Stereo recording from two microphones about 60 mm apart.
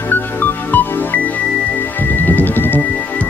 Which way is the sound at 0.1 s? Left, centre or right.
Left.